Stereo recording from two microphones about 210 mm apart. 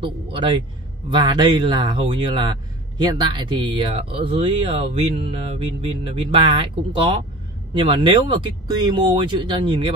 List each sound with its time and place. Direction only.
0.0 s speech: 25° right (ahead or behind)